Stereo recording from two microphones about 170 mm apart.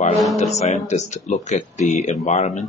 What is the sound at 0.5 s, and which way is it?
Speech, 40° left (ahead or behind).